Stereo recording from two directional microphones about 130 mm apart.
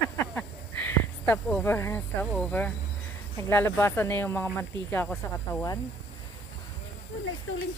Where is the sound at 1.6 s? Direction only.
20° left (ahead or behind).